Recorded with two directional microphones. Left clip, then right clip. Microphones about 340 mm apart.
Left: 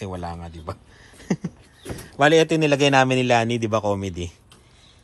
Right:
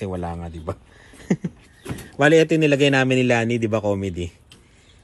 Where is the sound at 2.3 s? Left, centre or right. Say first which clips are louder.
Right 3 dB; left.